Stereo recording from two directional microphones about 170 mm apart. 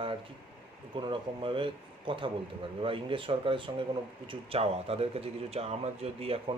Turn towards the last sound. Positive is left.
turn(degrees=-35)  # may be behind; listen again after turning